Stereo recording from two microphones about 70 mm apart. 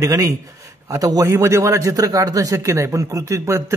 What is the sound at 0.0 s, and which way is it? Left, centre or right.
A man's voice, right.